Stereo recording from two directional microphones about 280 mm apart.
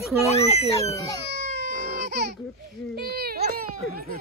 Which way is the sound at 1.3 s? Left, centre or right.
Right.